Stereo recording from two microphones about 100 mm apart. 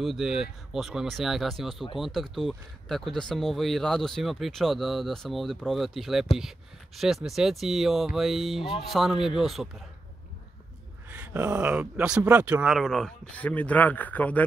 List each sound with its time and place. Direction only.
0.0 s speech: 5° right (ahead or behind)
11.1 s speech: 15° right (ahead or behind)
12.6 s speech: centre (ahead or behind)
13.4 s speech: 15° left (ahead or behind)